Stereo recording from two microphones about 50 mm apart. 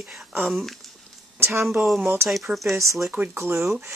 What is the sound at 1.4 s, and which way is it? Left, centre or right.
Speech, right.